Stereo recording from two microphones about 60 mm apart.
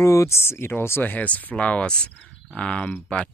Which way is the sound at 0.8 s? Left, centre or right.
Left.